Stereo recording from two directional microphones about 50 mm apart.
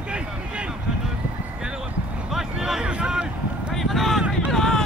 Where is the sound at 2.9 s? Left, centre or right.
Right.